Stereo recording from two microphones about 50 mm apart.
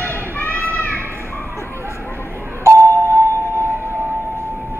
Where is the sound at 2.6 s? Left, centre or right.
Right.